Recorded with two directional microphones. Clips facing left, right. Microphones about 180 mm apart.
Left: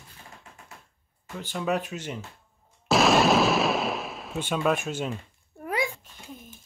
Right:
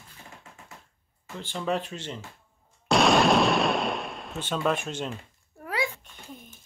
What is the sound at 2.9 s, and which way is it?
Artillery fire, centre (ahead or behind).